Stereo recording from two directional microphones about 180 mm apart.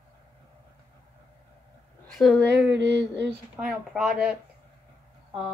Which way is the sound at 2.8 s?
75° right (ahead or behind).